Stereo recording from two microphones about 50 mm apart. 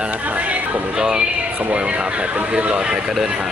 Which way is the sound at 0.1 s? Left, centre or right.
Right.